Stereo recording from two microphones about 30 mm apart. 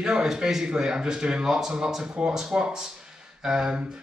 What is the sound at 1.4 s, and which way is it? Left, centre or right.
A man's voice, centre.